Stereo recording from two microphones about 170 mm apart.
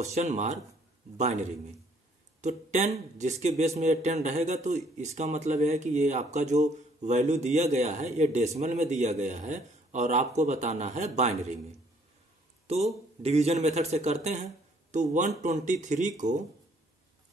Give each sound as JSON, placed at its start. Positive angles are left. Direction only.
{"t": 0.0, "sound": "speech", "side_deg": -40}
{"t": 12.6, "sound": "speech", "side_deg": -35}